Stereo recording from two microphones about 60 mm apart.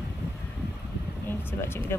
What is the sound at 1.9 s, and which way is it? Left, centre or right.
Speech, left.